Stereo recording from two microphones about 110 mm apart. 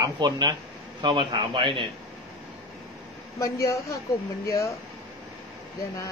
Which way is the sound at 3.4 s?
30° left (ahead or behind).